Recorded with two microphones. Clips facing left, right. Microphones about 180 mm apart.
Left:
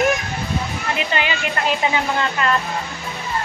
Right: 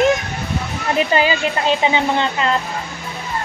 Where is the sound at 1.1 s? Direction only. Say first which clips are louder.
Right 5 dB; 35° right (ahead or behind).